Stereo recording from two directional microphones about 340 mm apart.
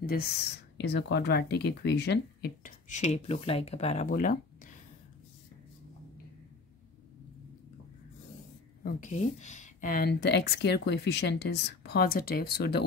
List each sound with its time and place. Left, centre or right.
0.0 s speech: left
8.8 s speech: left